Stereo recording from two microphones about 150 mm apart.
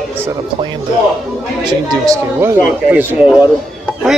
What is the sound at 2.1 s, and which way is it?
A man's voice, 15° right (ahead or behind).